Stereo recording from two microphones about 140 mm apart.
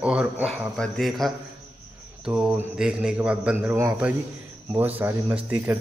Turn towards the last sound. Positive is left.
turn(degrees=-15)  # may be behind; listen again after turning